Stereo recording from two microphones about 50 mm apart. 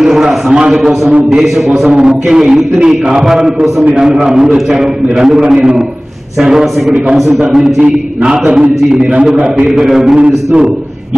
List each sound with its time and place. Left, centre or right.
0.0 s a sound: centre
0.6 s a man's voice: centre
7.8 s a man's voice: centre
10.1 s a man's voice: right